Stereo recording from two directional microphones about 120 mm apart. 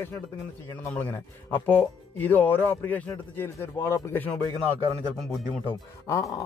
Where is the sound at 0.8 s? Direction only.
20° left (ahead or behind).